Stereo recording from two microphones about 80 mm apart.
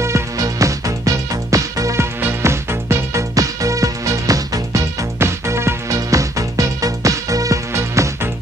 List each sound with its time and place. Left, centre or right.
0.0 s music: right